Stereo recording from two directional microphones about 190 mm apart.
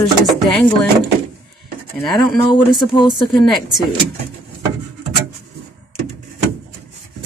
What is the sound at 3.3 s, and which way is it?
Speech, centre (ahead or behind).